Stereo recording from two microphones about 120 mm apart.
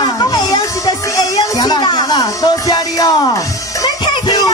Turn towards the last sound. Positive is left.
turn(degrees=35)  # may be behind; listen again after turning